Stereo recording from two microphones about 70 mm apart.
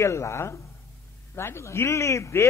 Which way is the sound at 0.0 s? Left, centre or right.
Left.